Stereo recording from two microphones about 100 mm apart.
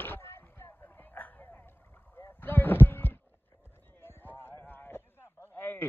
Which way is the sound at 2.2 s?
20° left (ahead or behind).